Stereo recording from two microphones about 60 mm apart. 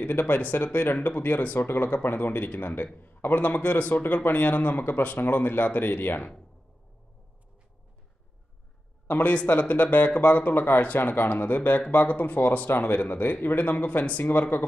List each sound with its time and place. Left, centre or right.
0.0 s a man's voice: left
9.0 s a man's voice: left